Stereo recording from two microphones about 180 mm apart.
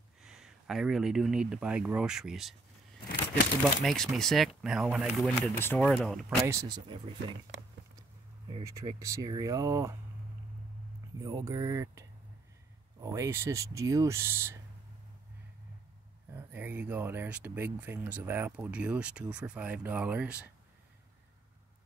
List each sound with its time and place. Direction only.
0.2 s speech: centre (ahead or behind)
3.8 s speech: 5° left (ahead or behind)
6.4 s speech: 20° right (ahead or behind)
8.6 s speech: 15° right (ahead or behind)
11.1 s speech: 20° right (ahead or behind)
16.3 s speech: 10° right (ahead or behind)